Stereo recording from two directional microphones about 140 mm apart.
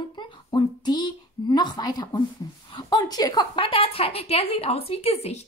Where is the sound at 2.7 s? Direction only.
30° left (ahead or behind).